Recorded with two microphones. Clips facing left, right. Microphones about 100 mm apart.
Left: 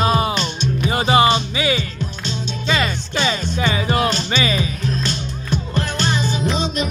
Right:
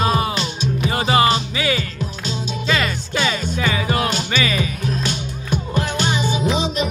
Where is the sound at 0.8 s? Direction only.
20° left (ahead or behind).